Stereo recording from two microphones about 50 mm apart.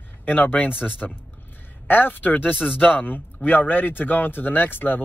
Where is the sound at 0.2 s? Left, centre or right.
Left.